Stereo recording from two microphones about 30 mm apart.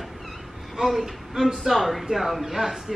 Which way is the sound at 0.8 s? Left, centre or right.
Centre.